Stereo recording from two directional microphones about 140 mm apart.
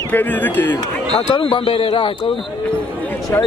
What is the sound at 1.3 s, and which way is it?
Speech, 40° left (ahead or behind).